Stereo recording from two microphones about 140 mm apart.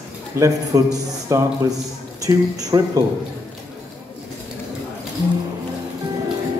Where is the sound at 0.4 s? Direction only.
20° right (ahead or behind).